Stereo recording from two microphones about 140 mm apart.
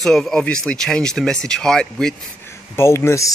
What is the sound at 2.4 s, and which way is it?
Speech, 20° left (ahead or behind).